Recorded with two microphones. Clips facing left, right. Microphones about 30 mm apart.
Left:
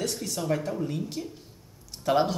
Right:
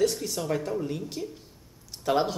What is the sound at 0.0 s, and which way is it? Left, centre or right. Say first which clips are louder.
Speech: right 4 dB; centre.